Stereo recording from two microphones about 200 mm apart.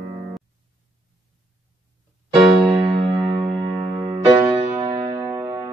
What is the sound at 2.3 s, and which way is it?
Keyboard, 25° right (ahead or behind).